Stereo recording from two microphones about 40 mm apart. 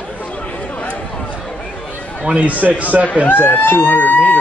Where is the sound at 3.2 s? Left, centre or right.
Left.